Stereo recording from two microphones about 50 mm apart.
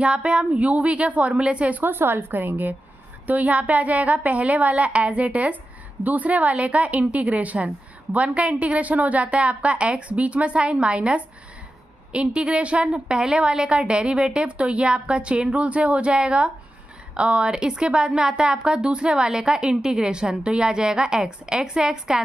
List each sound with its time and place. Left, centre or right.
0.0 s a woman's voice: right
1.8 s a woman's voice: right; by 22.2 s centre